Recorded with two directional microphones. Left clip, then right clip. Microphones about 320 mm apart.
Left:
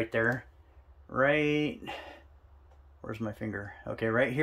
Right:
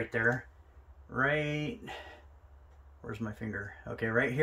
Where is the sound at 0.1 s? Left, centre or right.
Centre.